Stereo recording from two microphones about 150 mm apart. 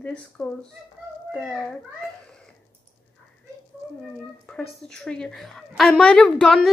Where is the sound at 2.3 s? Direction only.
5° left (ahead or behind).